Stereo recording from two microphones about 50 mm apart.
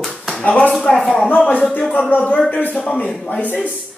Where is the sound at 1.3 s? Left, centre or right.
Left.